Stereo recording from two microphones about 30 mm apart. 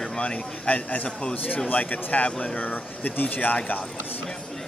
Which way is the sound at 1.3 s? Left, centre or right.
Left.